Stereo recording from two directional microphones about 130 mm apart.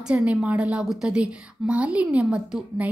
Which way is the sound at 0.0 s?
10° right (ahead or behind).